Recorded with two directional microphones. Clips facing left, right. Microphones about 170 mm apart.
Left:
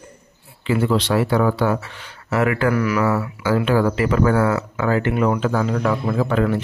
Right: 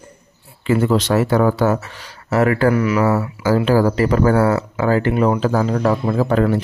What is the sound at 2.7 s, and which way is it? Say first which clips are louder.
Speech: right 3 dB; 25° right (ahead or behind).